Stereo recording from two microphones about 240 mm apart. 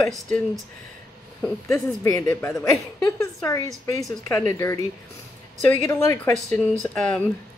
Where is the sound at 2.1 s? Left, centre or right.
Centre.